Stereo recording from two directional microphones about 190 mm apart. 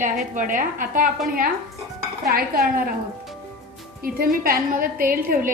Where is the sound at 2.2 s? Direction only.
50° right (ahead or behind).